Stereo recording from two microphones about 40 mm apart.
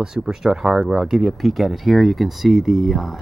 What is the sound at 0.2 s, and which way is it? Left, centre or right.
Speech, centre.